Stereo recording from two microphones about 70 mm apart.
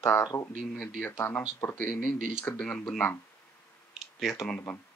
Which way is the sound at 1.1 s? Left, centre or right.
Left.